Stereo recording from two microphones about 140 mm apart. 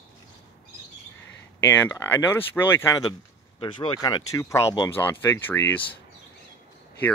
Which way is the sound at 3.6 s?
35° left (ahead or behind).